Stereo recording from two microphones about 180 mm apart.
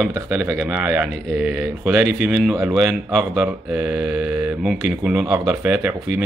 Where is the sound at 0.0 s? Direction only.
10° right (ahead or behind).